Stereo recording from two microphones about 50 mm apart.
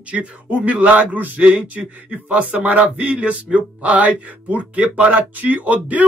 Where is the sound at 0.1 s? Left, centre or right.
Right.